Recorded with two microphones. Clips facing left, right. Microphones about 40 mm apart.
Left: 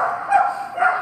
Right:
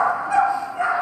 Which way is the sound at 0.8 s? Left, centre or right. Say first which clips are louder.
Left 6 dB; centre.